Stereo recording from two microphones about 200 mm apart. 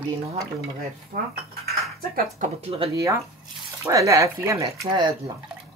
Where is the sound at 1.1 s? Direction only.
35° right (ahead or behind).